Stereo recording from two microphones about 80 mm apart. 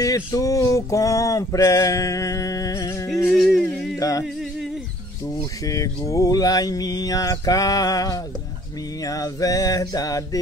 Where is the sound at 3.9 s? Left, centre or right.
Left.